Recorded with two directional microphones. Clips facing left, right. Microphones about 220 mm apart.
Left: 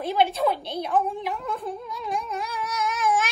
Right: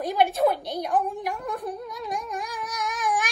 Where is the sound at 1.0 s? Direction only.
45° right (ahead or behind).